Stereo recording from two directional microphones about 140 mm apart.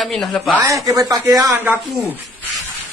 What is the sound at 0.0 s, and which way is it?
Speech, centre (ahead or behind).